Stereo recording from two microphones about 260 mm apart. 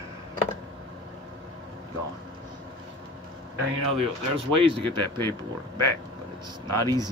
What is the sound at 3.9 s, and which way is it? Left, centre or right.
Speech, right.